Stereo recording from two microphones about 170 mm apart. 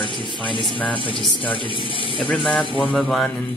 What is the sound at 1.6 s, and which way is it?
Speech, 30° right (ahead or behind).